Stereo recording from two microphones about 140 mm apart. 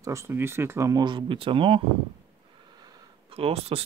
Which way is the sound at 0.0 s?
20° right (ahead or behind).